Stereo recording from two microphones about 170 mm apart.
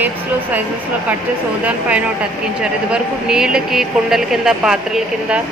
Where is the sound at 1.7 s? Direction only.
5° right (ahead or behind).